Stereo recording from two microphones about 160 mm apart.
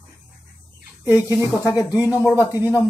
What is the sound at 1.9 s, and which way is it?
Speech, 10° right (ahead or behind).